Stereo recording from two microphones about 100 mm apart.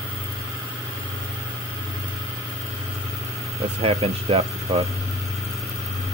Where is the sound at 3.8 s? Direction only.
80° right.